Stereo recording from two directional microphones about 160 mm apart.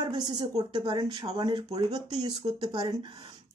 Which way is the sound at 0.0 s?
25° right (ahead or behind).